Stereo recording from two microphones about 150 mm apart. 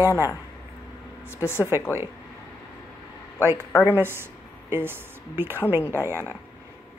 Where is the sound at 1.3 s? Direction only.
15° left (ahead or behind).